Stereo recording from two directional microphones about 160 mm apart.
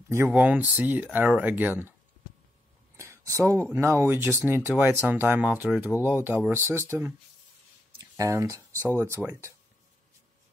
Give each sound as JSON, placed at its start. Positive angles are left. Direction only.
{"t": 0.1, "sound": "speech", "side_deg": -10}
{"t": 3.0, "sound": "a sound", "side_deg": -15}
{"t": 3.6, "sound": "speech", "side_deg": -15}